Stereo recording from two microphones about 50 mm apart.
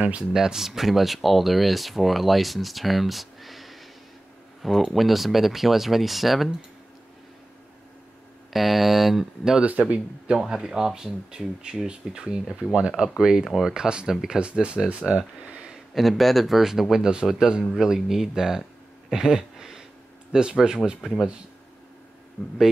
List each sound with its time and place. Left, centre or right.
0.3 s speech: centre
8.5 s speech: centre
9.6 s speech: right
10.4 s speech: centre
14.4 s speech: right
15.5 s a sound: centre
15.9 s speech: centre
19.0 s a sound: centre
20.3 s speech: centre